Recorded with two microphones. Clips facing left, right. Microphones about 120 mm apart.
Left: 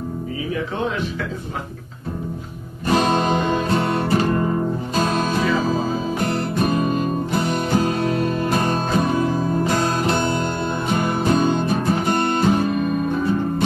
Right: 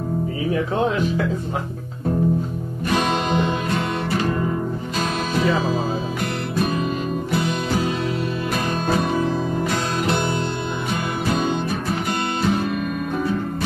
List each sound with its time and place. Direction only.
2.9 s music: 35° left (ahead or behind)
7.8 s music: 50° left (ahead or behind)
12.1 s music: 45° left (ahead or behind)